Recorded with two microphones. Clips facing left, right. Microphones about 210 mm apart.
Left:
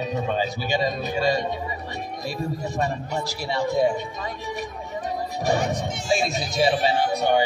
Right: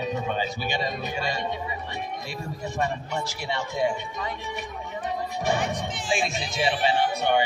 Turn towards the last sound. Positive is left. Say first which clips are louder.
# left 2 dB
turn(degrees=40)  # may be behind; listen again after turning